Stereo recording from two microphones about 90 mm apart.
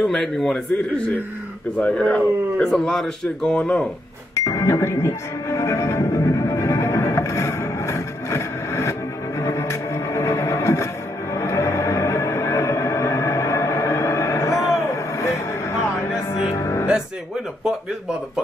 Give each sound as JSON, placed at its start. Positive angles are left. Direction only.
{"t": 0.0, "sound": "a man's voice", "side_deg": 5}
{"t": 4.5, "sound": "music", "side_deg": 35}
{"t": 15.1, "sound": "a sound", "side_deg": 30}
{"t": 16.5, "sound": "music", "side_deg": 35}